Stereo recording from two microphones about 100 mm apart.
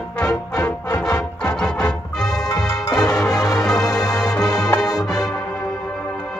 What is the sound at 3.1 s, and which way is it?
Music, centre (ahead or behind).